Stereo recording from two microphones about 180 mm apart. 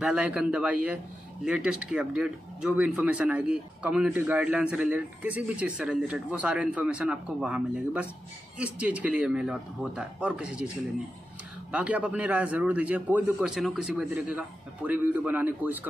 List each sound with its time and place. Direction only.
0.0 s speech: 5° right (ahead or behind)
11.7 s speech: 5° right (ahead or behind)